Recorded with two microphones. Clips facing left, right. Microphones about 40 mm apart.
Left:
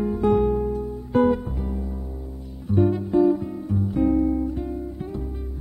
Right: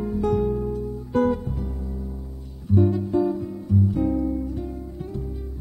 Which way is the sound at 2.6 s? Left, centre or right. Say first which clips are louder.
Even; left.